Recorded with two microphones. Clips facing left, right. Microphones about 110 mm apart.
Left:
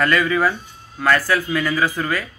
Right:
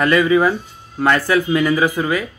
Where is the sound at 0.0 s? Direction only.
20° right (ahead or behind).